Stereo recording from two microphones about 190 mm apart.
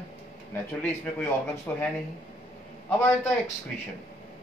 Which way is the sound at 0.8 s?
10° left (ahead or behind).